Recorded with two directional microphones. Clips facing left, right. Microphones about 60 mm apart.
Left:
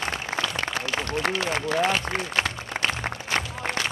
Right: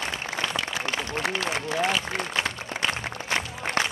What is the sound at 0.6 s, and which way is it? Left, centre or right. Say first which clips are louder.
Applause: left 1 dB; left.